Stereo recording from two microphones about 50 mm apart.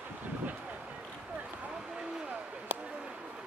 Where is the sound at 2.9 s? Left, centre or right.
Centre.